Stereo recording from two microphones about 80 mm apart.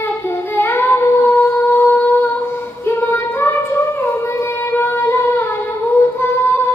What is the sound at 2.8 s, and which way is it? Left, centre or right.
Music, left.